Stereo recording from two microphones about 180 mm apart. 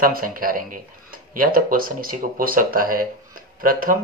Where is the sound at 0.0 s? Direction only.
55° right (ahead or behind).